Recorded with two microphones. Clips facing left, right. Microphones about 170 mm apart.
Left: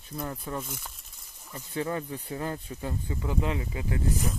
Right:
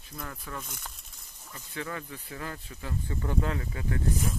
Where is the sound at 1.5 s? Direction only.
30° left (ahead or behind).